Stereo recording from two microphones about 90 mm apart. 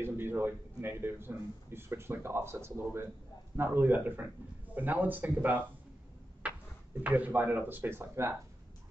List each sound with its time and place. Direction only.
0.0 s speech: 25° right (ahead or behind)
6.4 s a sound: 15° right (ahead or behind)
7.0 s speech: 15° right (ahead or behind)